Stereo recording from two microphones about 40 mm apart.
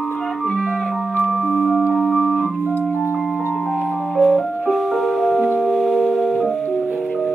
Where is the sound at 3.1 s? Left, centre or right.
Centre.